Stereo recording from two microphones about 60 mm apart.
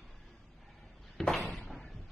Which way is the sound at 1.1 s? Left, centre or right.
Centre.